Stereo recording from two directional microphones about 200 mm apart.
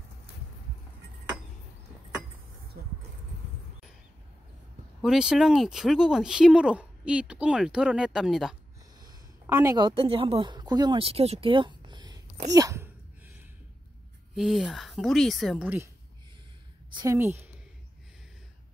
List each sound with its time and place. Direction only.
2.8 s a sound: 50° right (ahead or behind)
5.0 s speech: 5° right (ahead or behind)
9.0 s a woman's voice: 15° right (ahead or behind)
12.4 s a sound: 15° right (ahead or behind)
14.3 s speech: centre (ahead or behind)
16.9 s a woman's voice: 15° right (ahead or behind)